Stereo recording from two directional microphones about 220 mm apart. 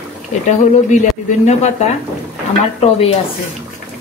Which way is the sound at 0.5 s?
30° left (ahead or behind).